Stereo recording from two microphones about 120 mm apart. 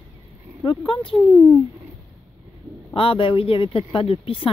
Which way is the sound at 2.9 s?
50° left (ahead or behind).